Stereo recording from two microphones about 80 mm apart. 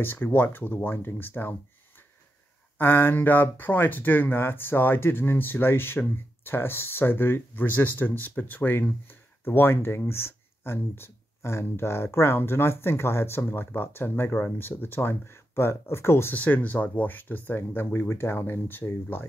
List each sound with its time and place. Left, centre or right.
0.0 s speech: left
2.8 s speech: left